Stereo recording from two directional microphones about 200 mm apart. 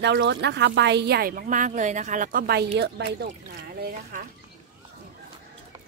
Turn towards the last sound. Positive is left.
turn(degrees=-50)  # may be behind; listen again after turning